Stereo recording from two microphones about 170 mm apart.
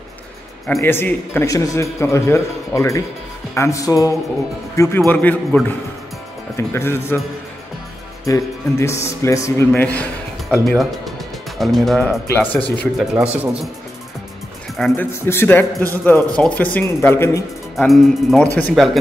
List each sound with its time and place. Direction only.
0.7 s a man's voice: 15° left (ahead or behind)
8.3 s a man's voice: 15° left (ahead or behind); by 12.2 s centre (ahead or behind)
12.3 s a man's voice: 10° left (ahead or behind)
12.7 s speech: centre (ahead or behind)
14.8 s a man's voice: 10° left (ahead or behind)
17.7 s speech: centre (ahead or behind)